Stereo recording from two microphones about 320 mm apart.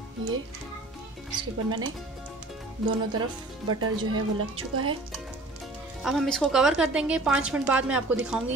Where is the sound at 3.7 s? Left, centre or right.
Right.